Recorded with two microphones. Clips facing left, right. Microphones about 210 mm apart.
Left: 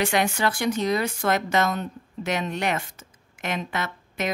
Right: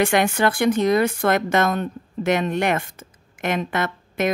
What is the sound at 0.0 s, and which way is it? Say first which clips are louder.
Speech: right 5 dB; 55° right (ahead or behind).